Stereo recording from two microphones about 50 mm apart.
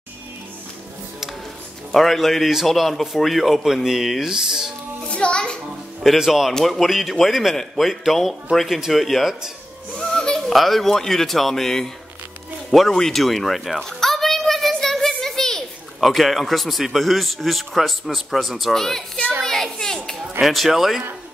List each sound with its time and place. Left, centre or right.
1.9 s speech: centre
5.1 s music: centre
6.1 s speech: centre
9.9 s music: centre
10.5 s speech: centre
12.9 s speech: centre
13.8 s a sound: centre
16.0 s speech: centre
19.4 s a sound: centre
20.3 s speech: centre